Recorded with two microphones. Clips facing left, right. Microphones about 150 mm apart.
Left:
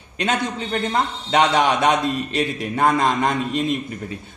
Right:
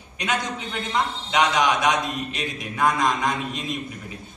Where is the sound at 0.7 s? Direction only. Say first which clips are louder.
Left 4 dB; 60° left (ahead or behind).